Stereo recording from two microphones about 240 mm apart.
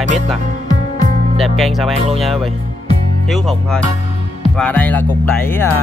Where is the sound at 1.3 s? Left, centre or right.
Centre.